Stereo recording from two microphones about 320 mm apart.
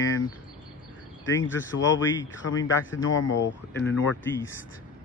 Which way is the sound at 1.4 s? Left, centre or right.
Left.